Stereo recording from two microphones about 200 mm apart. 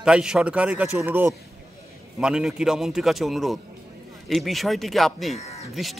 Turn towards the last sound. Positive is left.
turn(degrees=0)  # may be behind; listen again after turning